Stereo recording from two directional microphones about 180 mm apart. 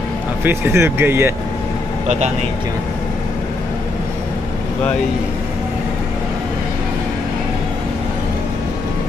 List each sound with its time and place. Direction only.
0.4 s speech: 15° right (ahead or behind)
2.0 s speech: 40° right (ahead or behind)